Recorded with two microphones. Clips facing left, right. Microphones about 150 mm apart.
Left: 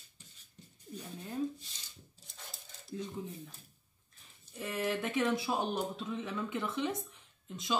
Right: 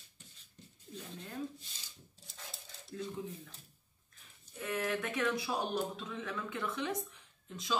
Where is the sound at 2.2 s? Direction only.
Centre (ahead or behind).